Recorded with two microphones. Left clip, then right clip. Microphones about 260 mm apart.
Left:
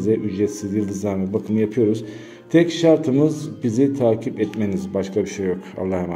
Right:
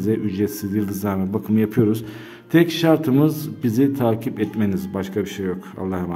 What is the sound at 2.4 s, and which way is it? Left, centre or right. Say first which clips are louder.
Mantra: even; centre.